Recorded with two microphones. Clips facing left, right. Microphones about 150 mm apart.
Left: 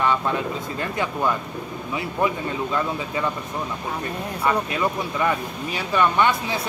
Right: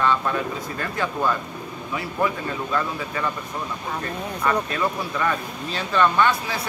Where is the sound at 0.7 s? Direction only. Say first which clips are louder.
Even; 20° left (ahead or behind).